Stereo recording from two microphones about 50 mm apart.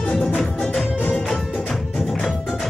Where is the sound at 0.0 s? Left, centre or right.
Left.